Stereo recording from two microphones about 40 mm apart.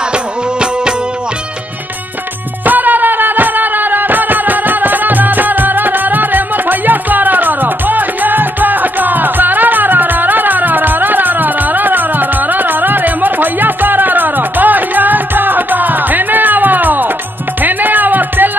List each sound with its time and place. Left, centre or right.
0.1 s music: right
2.6 s music: right